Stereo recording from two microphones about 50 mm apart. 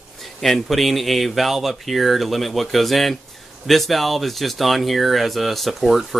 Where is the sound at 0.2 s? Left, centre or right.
Centre.